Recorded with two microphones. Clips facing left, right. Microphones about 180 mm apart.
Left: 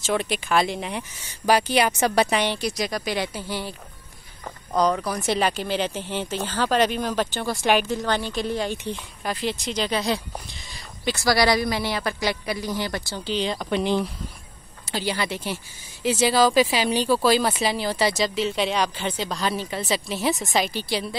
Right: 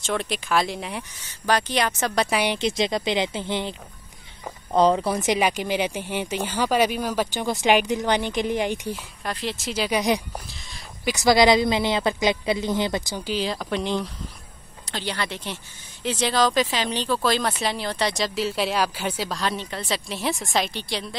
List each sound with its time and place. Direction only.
0.0 s speech: 5° left (ahead or behind)
2.2 s speech: 10° right (ahead or behind)
2.6 s speech: 25° right (ahead or behind)
4.7 s speech: 30° right (ahead or behind)
5.3 s speech: 15° right (ahead or behind)
9.2 s speech: centre (ahead or behind); by 10.2 s 15° right (ahead or behind)
10.3 s speech: centre (ahead or behind)
11.1 s speech: 20° right (ahead or behind); by 21.2 s 5° left (ahead or behind)